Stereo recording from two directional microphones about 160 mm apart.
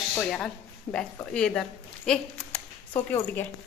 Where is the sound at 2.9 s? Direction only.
15° left (ahead or behind).